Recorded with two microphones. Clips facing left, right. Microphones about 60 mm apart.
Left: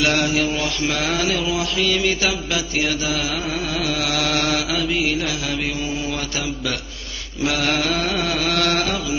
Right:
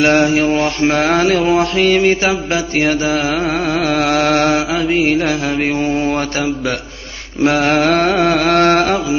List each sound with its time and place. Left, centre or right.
0.0 s mantra: right
7.4 s mantra: right